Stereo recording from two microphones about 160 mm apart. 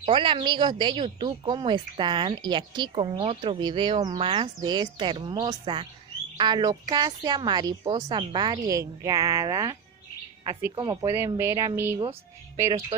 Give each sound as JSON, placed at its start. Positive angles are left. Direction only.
{"t": 0.0, "sound": "speech", "side_deg": -30}